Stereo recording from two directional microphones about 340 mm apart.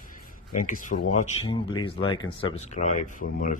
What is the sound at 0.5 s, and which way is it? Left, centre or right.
Speech, left.